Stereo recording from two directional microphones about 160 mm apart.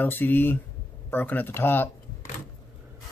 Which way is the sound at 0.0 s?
10° left (ahead or behind).